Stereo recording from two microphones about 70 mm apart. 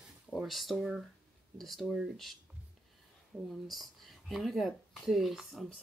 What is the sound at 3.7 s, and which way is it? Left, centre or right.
Speech, centre.